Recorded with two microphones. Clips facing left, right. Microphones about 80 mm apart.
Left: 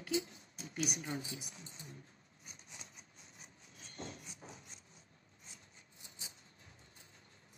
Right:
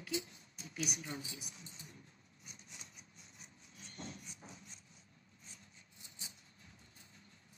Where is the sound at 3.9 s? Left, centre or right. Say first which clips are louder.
Left 2 dB; left.